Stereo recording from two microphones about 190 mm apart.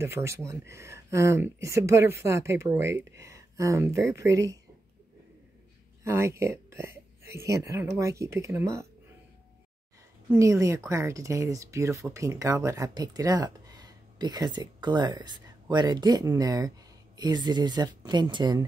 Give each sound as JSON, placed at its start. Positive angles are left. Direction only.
{"t": 0.0, "sound": "speech", "side_deg": -15}
{"t": 6.0, "sound": "speech", "side_deg": -15}
{"t": 10.3, "sound": "speech", "side_deg": -15}